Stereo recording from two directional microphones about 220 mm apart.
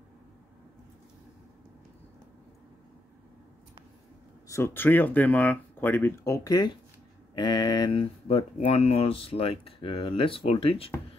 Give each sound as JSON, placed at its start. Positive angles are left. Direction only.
{"t": 4.5, "sound": "speech", "side_deg": 10}